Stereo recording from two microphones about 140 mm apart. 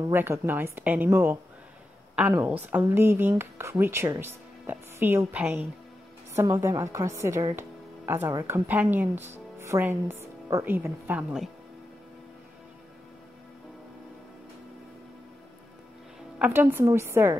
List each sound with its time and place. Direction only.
0.1 s a woman's voice: 15° right (ahead or behind)
8.6 s a woman's voice: 10° right (ahead or behind)
16.3 s a woman's voice: 15° right (ahead or behind)